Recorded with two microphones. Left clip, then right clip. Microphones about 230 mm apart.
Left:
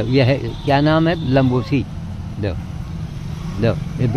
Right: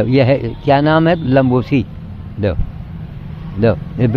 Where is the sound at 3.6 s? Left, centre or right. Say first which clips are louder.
Right 6 dB; right.